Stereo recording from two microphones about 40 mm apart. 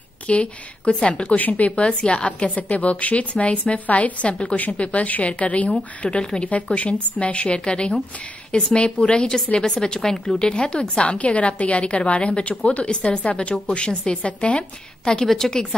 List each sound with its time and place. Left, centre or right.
0.3 s a woman's voice: left
1.3 s a woman's voice: left
5.7 s a woman's voice: centre
6.5 s a woman's voice: left; by 10.4 s centre
10.4 s a woman's voice: left
14.6 s a woman's voice: centre